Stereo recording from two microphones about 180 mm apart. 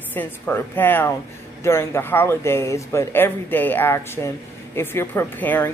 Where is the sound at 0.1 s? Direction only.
10° left (ahead or behind).